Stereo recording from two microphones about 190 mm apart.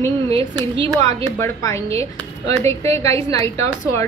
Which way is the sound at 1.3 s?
15° left (ahead or behind).